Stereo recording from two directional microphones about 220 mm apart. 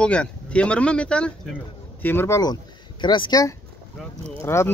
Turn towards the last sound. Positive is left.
turn(degrees=10)  # may be behind; listen again after turning